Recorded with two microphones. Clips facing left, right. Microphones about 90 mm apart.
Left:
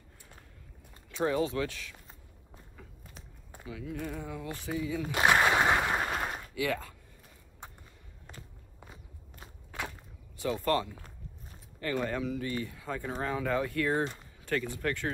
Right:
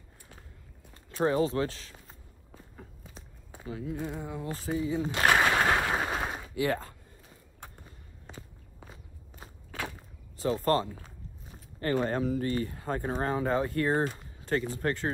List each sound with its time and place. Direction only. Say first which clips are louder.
1.0 s speech: right 3 dB; 35° right (ahead or behind)
3.6 s speech: right 4 dB; 40° right (ahead or behind)
4.0 s speech: right 2 dB; 20° right (ahead or behind)
5.2 s a sound: even; 10° left (ahead or behind); by 6.5 s 5° right (ahead or behind)
6.5 s speech: right 4 dB; 35° right (ahead or behind)
8.3 s walk: right 3 dB; 5° right (ahead or behind)
10.3 s speech: right 3 dB; 35° right (ahead or behind)
13.1 s speech: right 2 dB; 35° right (ahead or behind)